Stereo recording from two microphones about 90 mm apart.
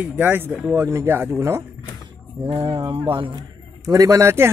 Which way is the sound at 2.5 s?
75° right (ahead or behind).